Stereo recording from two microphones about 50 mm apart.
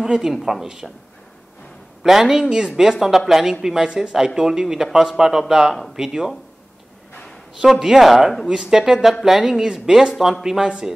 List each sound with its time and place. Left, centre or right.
0.0 s speech: centre
2.0 s speech: centre
7.7 s speech: centre
8.5 s speech: centre